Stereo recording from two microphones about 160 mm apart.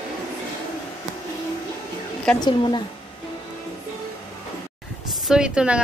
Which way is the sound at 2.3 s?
30° left (ahead or behind).